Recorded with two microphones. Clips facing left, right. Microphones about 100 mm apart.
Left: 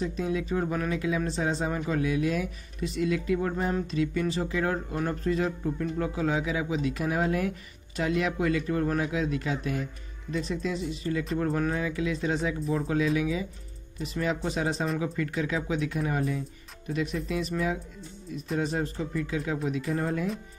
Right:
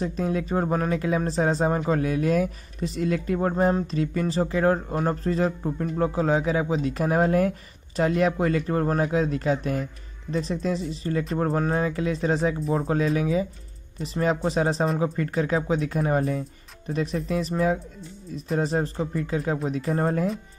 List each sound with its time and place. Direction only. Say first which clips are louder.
0.0 s speech: right 3 dB; 45° right (ahead or behind)